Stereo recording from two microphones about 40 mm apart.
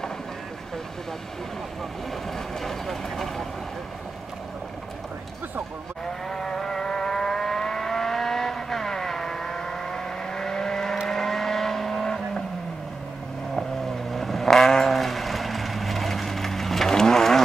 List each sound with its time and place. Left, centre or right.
2.3 s vehicle: centre
6.2 s vehicle: centre
14.1 s vehicle: centre